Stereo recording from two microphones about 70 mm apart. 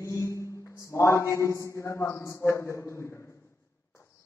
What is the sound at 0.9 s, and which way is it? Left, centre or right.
A man's voice, left.